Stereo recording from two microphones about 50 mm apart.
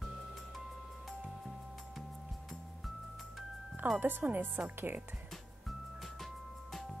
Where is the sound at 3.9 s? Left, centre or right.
Right.